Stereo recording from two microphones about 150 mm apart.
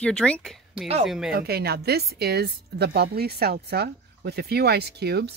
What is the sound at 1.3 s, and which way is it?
A woman's voice, 90° right.